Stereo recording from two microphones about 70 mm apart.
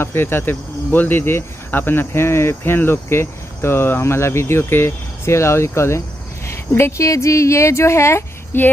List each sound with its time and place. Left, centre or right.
0.0 s a woman's voice: left
8.5 s speech: left